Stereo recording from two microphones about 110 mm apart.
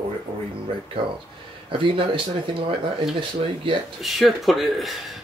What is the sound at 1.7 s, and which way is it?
Speech, 50° right (ahead or behind).